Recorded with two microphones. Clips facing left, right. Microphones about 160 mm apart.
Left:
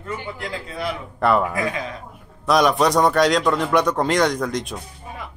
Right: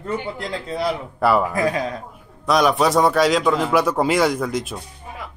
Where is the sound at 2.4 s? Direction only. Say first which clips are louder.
Even; centre (ahead or behind).